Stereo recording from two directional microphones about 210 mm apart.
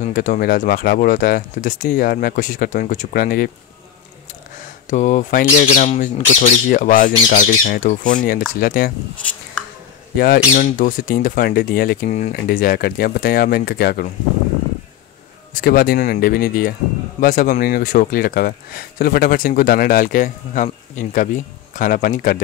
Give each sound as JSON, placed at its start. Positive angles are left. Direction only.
{"t": 0.0, "sound": "speech", "side_deg": 40}
{"t": 4.8, "sound": "speech", "side_deg": 35}
{"t": 10.1, "sound": "speech", "side_deg": 45}
{"t": 15.5, "sound": "speech", "side_deg": 45}